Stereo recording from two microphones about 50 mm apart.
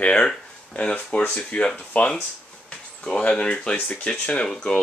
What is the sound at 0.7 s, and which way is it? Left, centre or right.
Speech, left.